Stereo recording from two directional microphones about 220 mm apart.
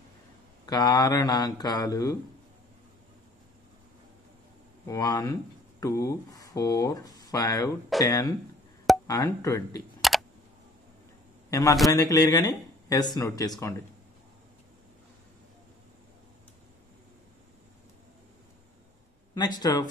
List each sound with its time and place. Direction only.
0.7 s speech: 15° left (ahead or behind)
4.8 s speech: 15° left (ahead or behind)
11.5 s speech: 15° left (ahead or behind)
19.3 s speech: 20° left (ahead or behind)